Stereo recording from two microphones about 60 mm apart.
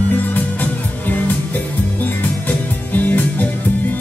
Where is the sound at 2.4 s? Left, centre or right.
Left.